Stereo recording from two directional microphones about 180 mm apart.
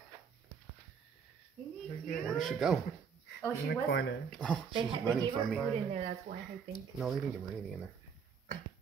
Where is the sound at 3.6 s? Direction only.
65° left (ahead or behind).